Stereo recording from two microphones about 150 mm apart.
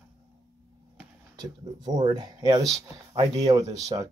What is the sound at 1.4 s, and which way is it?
Speech, 25° right (ahead or behind).